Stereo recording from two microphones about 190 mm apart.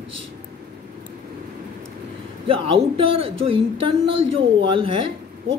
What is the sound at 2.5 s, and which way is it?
A man's voice, 30° right (ahead or behind).